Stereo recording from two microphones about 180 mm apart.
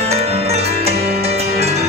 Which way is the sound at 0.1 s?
35° right (ahead or behind).